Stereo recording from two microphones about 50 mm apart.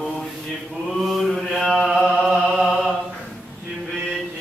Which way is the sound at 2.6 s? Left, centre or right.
Centre.